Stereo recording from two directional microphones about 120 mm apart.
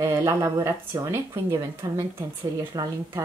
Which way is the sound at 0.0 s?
25° right (ahead or behind).